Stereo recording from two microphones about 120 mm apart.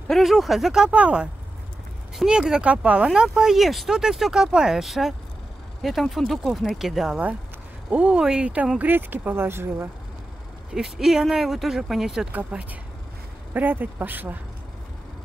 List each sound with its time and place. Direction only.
0.1 s speech: centre (ahead or behind); by 9.8 s 20° right (ahead or behind)
10.7 s speech: 5° right (ahead or behind)